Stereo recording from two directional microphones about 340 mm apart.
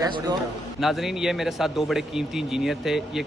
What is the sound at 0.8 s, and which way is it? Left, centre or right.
Speech, centre.